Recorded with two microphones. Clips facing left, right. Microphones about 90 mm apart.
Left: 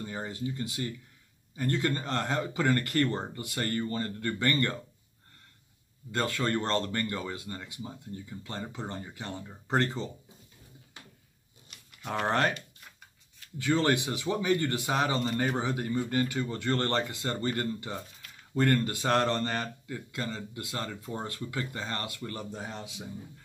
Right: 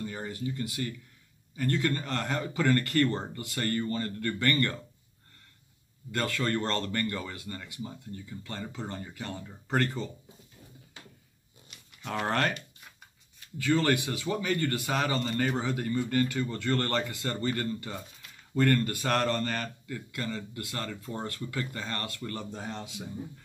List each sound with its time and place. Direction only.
0.0 s speech: 20° left (ahead or behind)
6.1 s speech: 25° left (ahead or behind)
11.7 s a sound: centre (ahead or behind)
12.3 s a man's voice: 15° left (ahead or behind)
13.6 s a man's voice: 20° left (ahead or behind)